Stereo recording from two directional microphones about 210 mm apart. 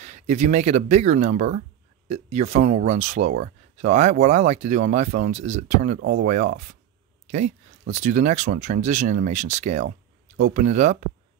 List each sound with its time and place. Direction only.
0.0 s speech: 35° right (ahead or behind)
5.9 s speech: 55° right (ahead or behind)
6.2 s speech: 35° right (ahead or behind)